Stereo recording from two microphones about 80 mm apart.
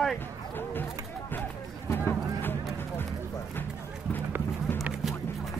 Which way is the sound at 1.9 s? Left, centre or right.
Left.